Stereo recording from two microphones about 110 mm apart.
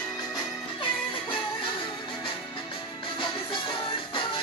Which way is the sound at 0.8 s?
50° left (ahead or behind).